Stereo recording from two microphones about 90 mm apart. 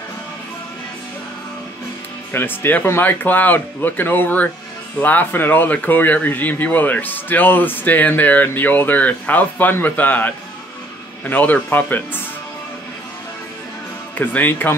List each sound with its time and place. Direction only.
2.3 s speech: 25° left (ahead or behind)
14.1 s speech: 20° left (ahead or behind)